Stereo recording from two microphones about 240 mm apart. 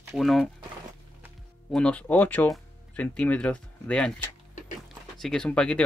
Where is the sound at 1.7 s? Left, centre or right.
Centre.